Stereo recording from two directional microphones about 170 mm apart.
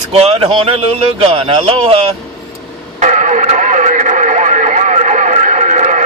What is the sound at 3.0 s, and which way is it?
Radio, 45° right (ahead or behind).